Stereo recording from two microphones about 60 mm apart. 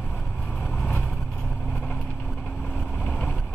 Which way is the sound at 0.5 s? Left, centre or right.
Centre.